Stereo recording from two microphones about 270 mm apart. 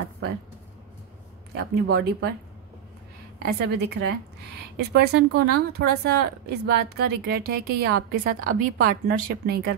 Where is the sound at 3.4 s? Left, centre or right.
Right.